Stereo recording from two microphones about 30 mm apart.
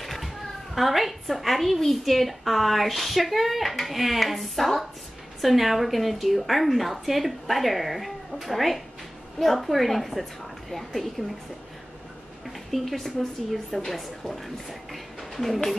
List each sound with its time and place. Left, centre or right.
0.0 s children playing: centre
0.7 s a woman's voice: centre
11.2 s a woman's voice: right
12.4 s a woman's voice: centre